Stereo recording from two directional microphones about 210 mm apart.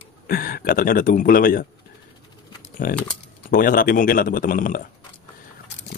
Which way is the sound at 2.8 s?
40° left (ahead or behind).